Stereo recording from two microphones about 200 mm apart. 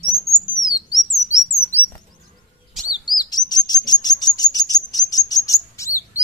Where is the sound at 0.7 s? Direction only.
40° left (ahead or behind).